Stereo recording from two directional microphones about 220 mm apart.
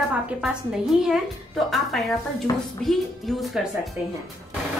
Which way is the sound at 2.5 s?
20° left (ahead or behind).